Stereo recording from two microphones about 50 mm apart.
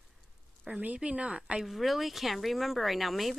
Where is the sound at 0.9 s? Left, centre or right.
Right.